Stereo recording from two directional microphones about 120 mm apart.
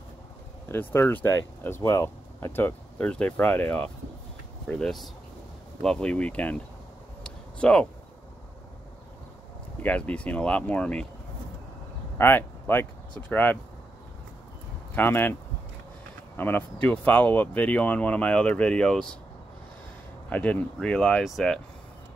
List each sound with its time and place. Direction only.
0.7 s speech: 20° left (ahead or behind)
7.2 s a sound: 10° left (ahead or behind)
9.8 s speech: 10° left (ahead or behind)
12.2 s speech: 15° left (ahead or behind)
15.0 s speech: 15° left (ahead or behind)
16.3 s speech: 15° left (ahead or behind)
20.2 s speech: 10° left (ahead or behind)